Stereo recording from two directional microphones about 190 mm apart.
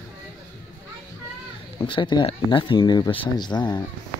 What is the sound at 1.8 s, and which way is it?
Speech, 25° left (ahead or behind).